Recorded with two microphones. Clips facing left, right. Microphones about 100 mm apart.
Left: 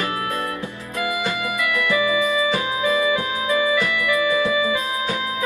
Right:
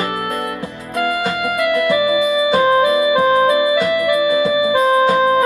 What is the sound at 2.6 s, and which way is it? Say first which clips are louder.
Music: right 8 dB; 45° right (ahead or behind).